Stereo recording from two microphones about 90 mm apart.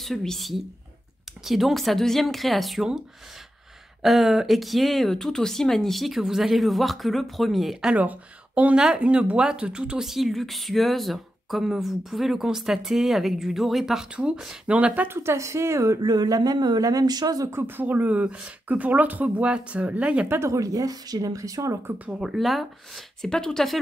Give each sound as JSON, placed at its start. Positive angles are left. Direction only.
{"t": 0.0, "sound": "speech", "side_deg": 5}
{"t": 4.0, "sound": "speech", "side_deg": 0}
{"t": 7.9, "sound": "speech", "side_deg": -15}
{"t": 15.0, "sound": "speech", "side_deg": -30}
{"t": 17.5, "sound": "speech", "side_deg": -25}
{"t": 20.2, "sound": "speech", "side_deg": -30}
{"t": 21.8, "sound": "speech", "side_deg": -15}
{"t": 22.2, "sound": "speech", "side_deg": 0}